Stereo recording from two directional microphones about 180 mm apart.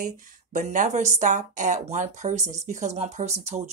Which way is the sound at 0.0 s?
45° right (ahead or behind).